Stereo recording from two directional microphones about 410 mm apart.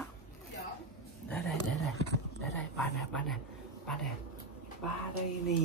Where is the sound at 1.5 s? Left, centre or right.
Left.